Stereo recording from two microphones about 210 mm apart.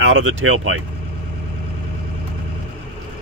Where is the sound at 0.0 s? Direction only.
80° right.